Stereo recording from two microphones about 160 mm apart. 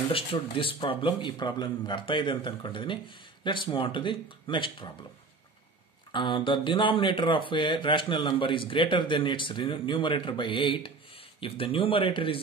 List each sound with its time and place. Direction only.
0.1 s speech: 35° left (ahead or behind)
6.1 s speech: 30° left (ahead or behind)